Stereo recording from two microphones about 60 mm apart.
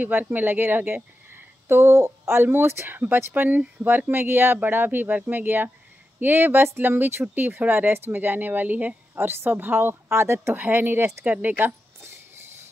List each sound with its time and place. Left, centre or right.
0.0 s speech: right
9.2 s speech: right
10.5 s speech: right
11.4 s a sound: right